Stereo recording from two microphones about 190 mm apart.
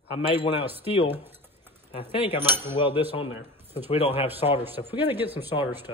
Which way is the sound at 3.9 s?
30° left (ahead or behind).